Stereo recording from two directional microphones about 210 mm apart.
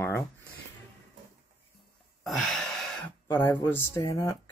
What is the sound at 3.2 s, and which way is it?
Speech, 15° left (ahead or behind).